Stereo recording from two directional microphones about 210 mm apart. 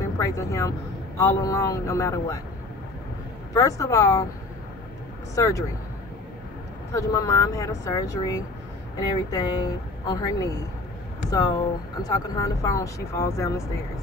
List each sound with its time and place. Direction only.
0.2 s speech: 15° left (ahead or behind)
3.5 s speech: 15° left (ahead or behind)
5.3 s speech: 15° left (ahead or behind)
6.9 s speech: 15° left (ahead or behind)